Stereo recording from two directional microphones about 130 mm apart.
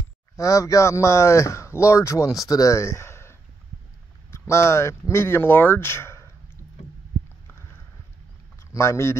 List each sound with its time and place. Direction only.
0.4 s speech: 25° left (ahead or behind)
7.4 s a sound: 20° left (ahead or behind)
8.7 s speech: 20° left (ahead or behind)